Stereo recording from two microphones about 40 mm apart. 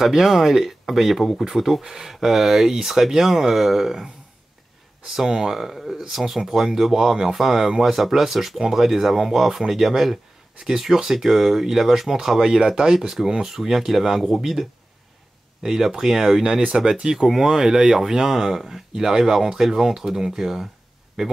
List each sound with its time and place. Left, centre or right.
0.0 s speech: centre